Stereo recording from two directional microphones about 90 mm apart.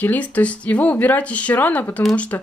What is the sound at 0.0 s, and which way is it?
Speech, 15° left (ahead or behind).